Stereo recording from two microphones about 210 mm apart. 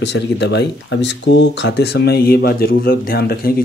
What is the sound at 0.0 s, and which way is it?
Speech, 55° left (ahead or behind).